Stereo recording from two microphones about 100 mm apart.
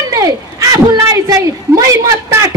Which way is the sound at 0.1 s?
35° right (ahead or behind).